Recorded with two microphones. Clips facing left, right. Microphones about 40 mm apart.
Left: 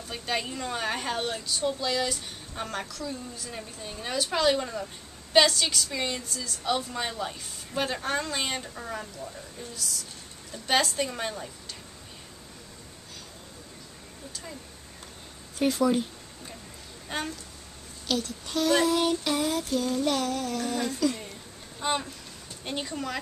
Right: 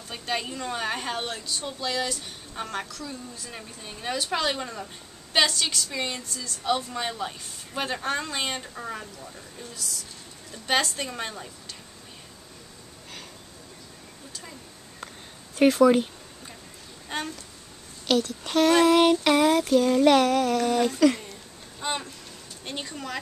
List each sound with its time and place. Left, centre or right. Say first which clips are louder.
0.1 s a woman's voice: right 1 dB; centre
15.6 s speech: right 6 dB; right
17.1 s a woman's voice: right 1 dB; centre
18.0 s a sound: right 6 dB; right
21.7 s a woman's voice: left 2 dB; centre